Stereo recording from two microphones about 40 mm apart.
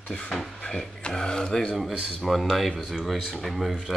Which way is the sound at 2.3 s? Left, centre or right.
Centre.